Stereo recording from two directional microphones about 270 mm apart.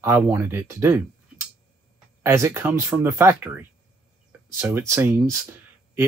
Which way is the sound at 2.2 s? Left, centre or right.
Centre.